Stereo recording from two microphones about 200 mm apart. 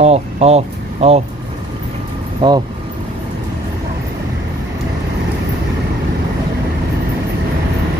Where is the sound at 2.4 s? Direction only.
25° right (ahead or behind).